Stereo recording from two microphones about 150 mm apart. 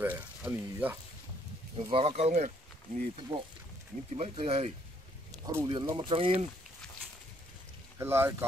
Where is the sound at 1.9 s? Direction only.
40° right (ahead or behind).